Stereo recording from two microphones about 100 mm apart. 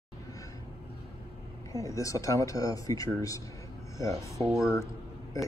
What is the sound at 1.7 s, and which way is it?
A man's voice, 35° left (ahead or behind).